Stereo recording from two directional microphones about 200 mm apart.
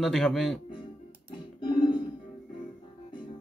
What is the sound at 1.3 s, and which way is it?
Music, 25° left (ahead or behind).